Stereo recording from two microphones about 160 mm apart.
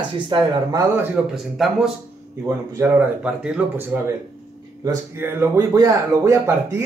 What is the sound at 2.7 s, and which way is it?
Speech, 15° right (ahead or behind).